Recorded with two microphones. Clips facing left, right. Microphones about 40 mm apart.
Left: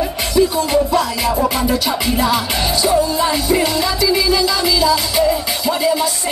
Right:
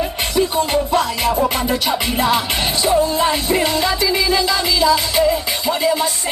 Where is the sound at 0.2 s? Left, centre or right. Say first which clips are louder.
Left 3 dB; right.